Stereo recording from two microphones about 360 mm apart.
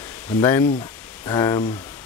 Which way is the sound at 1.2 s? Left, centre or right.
Centre.